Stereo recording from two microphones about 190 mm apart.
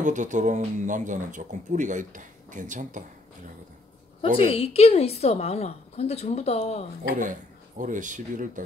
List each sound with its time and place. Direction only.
0.0 s speech: 40° right (ahead or behind)
4.5 s a woman's voice: 30° left (ahead or behind)
7.2 s speech: 45° right (ahead or behind)